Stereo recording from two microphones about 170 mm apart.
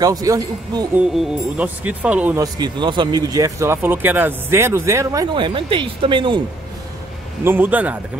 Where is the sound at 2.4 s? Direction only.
25° right (ahead or behind).